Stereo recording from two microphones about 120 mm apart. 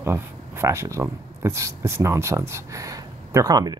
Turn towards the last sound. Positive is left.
turn(degrees=-30)  # may be behind; listen again after turning